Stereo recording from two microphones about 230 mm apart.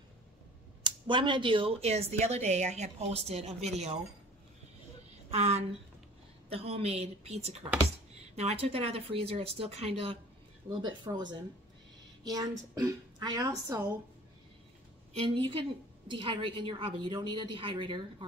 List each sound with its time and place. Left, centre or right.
0.8 s speech: right
5.3 s a woman's voice: right
15.1 s speech: right